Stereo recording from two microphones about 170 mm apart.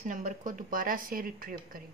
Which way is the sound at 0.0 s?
45° right (ahead or behind).